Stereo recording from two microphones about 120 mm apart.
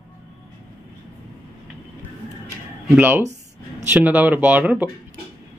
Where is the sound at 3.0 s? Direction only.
15° right (ahead or behind).